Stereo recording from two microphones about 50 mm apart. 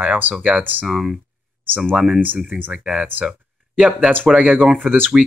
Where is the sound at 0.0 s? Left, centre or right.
Right.